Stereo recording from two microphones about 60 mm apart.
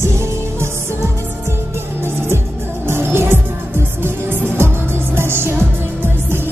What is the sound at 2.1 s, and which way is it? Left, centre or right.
Music, right.